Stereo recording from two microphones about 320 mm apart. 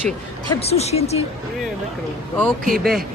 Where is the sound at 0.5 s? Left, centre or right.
Centre.